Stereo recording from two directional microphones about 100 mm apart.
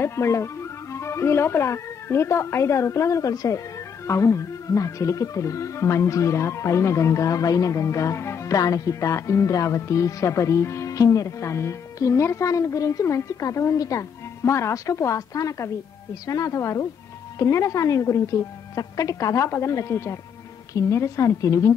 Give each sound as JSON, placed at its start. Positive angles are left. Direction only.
{"t": 0.0, "sound": "speech", "side_deg": 25}